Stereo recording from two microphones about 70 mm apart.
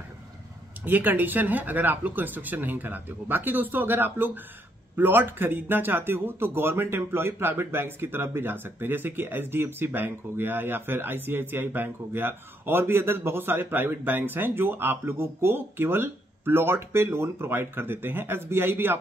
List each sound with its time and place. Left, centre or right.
0.8 s a man's voice: right